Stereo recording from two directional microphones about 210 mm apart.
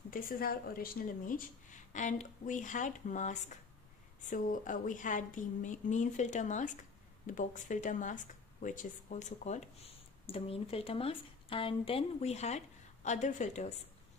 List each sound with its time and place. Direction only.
0.1 s speech: 40° left (ahead or behind)